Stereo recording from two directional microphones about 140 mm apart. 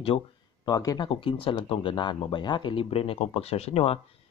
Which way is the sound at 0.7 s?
25° left (ahead or behind).